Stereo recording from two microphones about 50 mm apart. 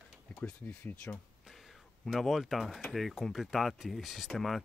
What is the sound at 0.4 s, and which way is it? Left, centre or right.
Speech, left.